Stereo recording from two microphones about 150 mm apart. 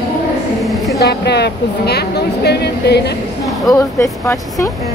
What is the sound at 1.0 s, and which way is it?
A woman's voice, 90° left.